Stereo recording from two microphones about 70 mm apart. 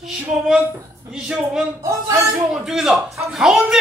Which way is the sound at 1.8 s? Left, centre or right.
Right.